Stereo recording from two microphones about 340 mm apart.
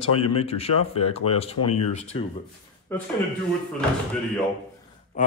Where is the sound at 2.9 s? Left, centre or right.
Centre.